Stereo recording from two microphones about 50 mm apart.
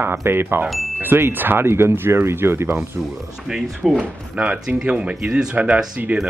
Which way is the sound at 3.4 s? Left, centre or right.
Centre.